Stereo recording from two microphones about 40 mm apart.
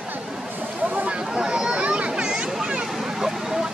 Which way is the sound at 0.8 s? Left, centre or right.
Right.